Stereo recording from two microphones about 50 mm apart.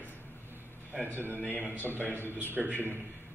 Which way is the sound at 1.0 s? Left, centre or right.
Right.